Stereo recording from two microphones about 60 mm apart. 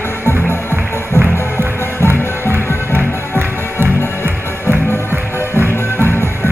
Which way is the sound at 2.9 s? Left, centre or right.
Right.